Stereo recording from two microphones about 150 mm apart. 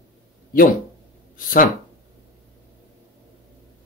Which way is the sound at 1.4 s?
70° left (ahead or behind).